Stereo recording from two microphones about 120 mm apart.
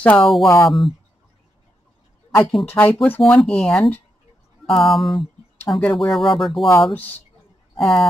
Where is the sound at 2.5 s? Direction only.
15° left (ahead or behind).